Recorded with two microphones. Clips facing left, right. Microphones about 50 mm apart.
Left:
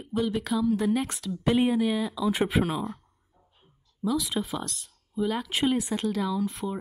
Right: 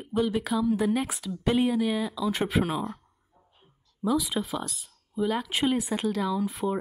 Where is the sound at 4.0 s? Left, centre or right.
Centre.